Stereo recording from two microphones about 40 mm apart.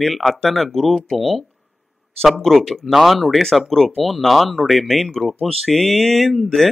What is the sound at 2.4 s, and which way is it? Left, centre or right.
Speech, centre.